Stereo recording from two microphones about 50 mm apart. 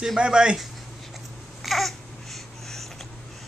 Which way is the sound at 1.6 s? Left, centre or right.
Centre.